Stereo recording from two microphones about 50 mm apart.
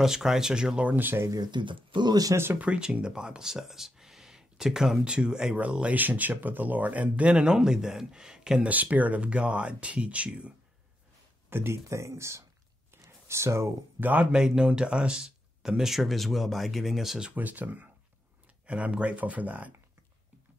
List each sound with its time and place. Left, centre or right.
0.0 s speech: centre
0.8 s speech: right
2.6 s speech: right; by 5.0 s centre
5.0 s speech: centre
5.6 s speech: right
5.9 s speech: right; by 8.5 s centre
8.5 s speech: right
11.5 s speech: right
12.9 s a sound: right
13.9 s speech: right
14.3 s speech: centre
17.4 s speech: right